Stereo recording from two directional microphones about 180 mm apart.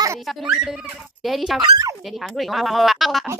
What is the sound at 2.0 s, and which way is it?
Speech, centre (ahead or behind).